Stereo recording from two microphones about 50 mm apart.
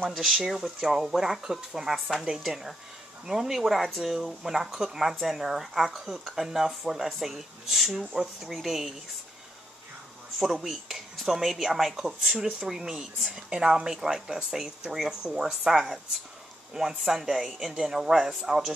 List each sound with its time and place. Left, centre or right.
0.1 s speech: centre
10.4 s speech: centre